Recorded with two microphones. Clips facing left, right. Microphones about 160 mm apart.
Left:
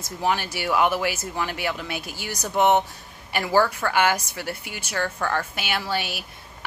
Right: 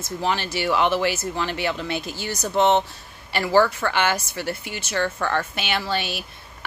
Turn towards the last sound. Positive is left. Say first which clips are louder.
# right 2 dB
turn(degrees=10)  # may be behind; listen again after turning